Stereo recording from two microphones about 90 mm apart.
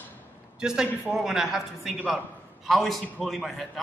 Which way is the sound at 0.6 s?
5° right (ahead or behind).